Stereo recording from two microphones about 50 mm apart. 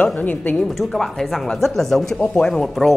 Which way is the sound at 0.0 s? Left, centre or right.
Left.